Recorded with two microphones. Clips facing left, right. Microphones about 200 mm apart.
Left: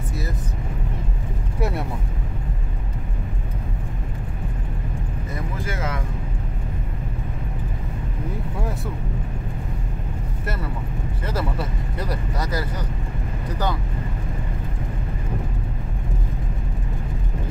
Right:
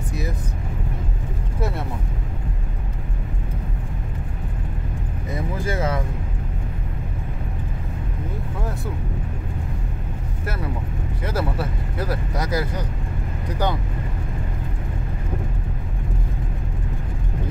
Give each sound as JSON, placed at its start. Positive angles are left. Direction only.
{"t": 11.2, "sound": "speech", "side_deg": -5}